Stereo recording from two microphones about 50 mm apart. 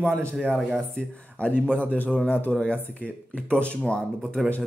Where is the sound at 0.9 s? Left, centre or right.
Left.